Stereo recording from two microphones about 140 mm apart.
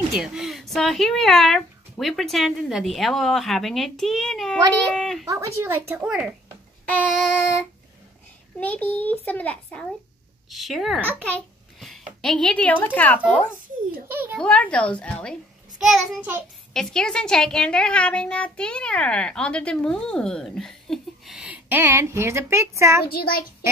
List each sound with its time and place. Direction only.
0.1 s a child's voice: 5° right (ahead or behind)
5.3 s speech: 15° right (ahead or behind)
6.0 s a child's voice: 5° right (ahead or behind)
6.9 s a child's voice: 15° left (ahead or behind)
14.1 s speech: 15° right (ahead or behind)
14.4 s a child's voice: 10° left (ahead or behind); by 23.0 s 20° right (ahead or behind)
23.1 s child singing: 90° left